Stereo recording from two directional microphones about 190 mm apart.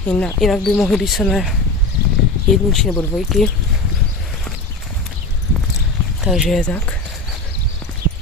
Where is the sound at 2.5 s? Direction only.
Centre (ahead or behind).